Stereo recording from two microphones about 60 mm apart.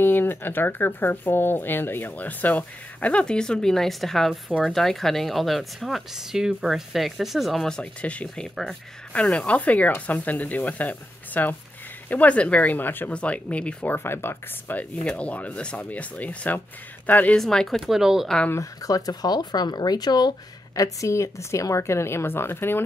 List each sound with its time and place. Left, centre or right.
0.0 s speech: left; by 7.6 s centre
7.6 s speech: centre; by 13.1 s left
13.1 s speech: left
13.8 s speech: left
15.0 s speech: left
17.4 s speech: centre
18.6 s speech: left
20.7 s a woman's voice: left